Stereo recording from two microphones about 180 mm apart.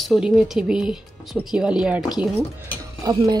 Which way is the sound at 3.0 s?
20° right (ahead or behind).